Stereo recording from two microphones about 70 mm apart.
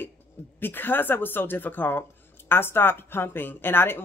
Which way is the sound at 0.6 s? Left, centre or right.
Left.